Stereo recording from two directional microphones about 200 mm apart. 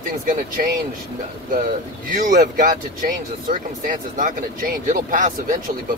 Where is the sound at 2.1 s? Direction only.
40° right (ahead or behind).